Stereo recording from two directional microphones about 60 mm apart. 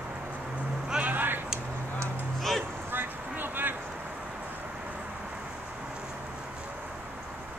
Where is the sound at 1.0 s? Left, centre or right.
Right.